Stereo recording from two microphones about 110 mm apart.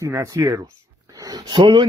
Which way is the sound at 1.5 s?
45° right (ahead or behind).